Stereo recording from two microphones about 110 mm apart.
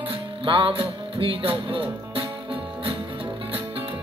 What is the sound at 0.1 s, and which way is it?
Music, 50° right (ahead or behind).